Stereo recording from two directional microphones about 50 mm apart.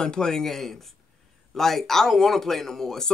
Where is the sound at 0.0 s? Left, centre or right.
Centre.